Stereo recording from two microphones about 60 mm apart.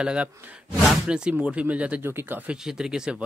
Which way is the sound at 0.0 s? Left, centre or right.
Centre.